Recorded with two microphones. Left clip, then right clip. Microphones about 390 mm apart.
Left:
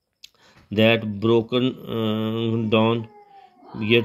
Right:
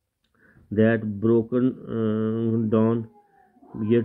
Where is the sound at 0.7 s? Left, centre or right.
Left.